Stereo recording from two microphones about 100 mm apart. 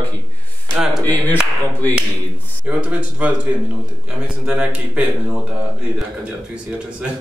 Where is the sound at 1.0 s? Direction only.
20° left (ahead or behind).